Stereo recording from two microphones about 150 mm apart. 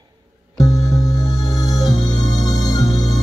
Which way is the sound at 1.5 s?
25° left (ahead or behind).